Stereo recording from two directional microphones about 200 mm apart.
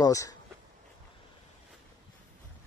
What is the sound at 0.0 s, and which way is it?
Speech, 15° left (ahead or behind).